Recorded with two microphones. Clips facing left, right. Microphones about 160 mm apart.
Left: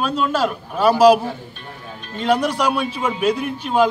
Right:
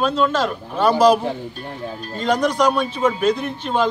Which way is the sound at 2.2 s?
5° left (ahead or behind).